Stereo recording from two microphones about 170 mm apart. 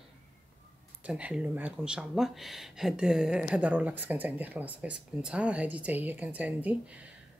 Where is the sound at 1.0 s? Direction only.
5° right (ahead or behind).